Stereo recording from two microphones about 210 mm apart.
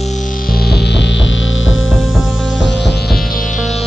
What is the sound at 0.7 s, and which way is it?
Music, 50° left (ahead or behind).